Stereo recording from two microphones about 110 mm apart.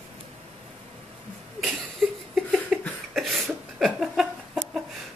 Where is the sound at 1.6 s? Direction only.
Centre (ahead or behind).